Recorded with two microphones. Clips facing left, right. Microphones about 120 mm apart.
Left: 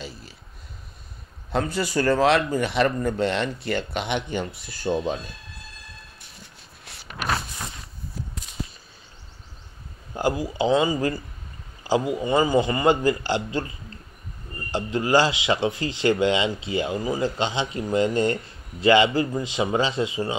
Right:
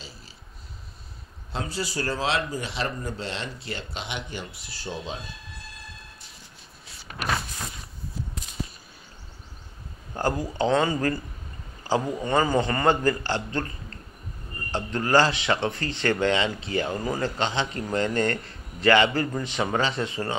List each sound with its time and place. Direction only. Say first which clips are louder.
1.5 s speech: left 7 dB; 55° left (ahead or behind)
10.1 s speech: left 2 dB; 10° left (ahead or behind)